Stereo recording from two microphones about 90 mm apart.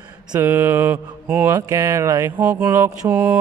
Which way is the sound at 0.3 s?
20° right (ahead or behind).